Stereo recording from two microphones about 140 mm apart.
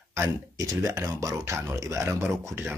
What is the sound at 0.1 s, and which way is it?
Speech, 20° right (ahead or behind).